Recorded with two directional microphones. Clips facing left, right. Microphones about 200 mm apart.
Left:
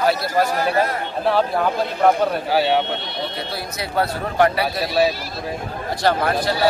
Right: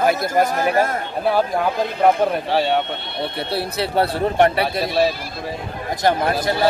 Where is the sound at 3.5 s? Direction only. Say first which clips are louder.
Right 5 dB; 30° right (ahead or behind).